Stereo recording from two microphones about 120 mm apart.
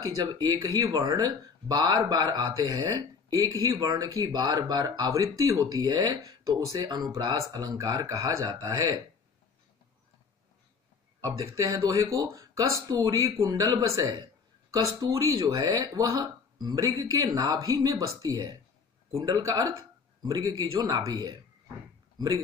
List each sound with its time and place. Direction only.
0.0 s speech: 30° right (ahead or behind)
11.1 s speech: 30° right (ahead or behind)